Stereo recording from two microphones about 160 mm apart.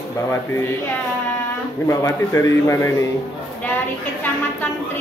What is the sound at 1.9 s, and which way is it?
Speech, 20° left (ahead or behind).